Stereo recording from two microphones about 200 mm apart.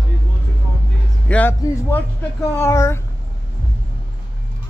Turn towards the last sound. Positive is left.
turn(degrees=15)  # may be behind; listen again after turning